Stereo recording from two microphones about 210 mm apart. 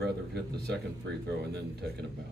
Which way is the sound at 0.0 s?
50° right (ahead or behind).